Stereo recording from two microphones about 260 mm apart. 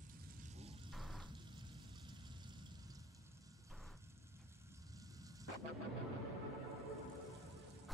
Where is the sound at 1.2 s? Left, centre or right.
Centre.